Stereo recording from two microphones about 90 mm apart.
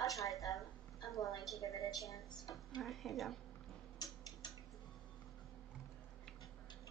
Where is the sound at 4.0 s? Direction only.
50° left (ahead or behind).